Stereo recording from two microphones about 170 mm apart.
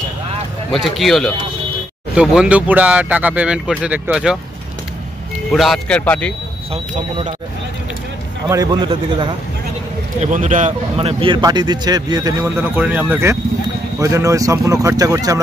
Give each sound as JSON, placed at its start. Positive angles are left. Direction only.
{"t": 0.7, "sound": "speech", "side_deg": 0}
{"t": 5.5, "sound": "speech", "side_deg": 0}
{"t": 6.7, "sound": "speech", "side_deg": -35}
{"t": 8.5, "sound": "speech", "side_deg": -25}
{"t": 10.2, "sound": "a man's voice", "side_deg": -45}
{"t": 11.0, "sound": "speech", "side_deg": -30}